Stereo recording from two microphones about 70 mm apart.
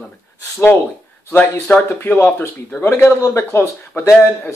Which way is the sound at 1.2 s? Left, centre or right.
Left.